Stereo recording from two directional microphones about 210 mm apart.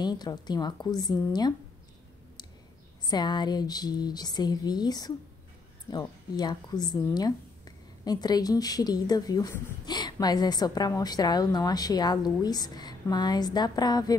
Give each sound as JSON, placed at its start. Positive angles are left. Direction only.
{"t": 0.0, "sound": "speech", "side_deg": 20}
{"t": 3.1, "sound": "speech", "side_deg": 20}